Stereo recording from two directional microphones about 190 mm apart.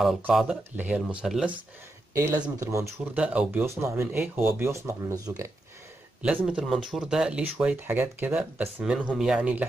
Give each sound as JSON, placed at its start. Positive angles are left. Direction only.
{"t": 0.0, "sound": "speech", "side_deg": 0}
{"t": 2.1, "sound": "speech", "side_deg": -15}
{"t": 6.2, "sound": "speech", "side_deg": -5}